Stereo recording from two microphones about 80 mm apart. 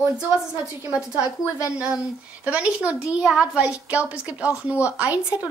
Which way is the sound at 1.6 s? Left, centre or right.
Centre.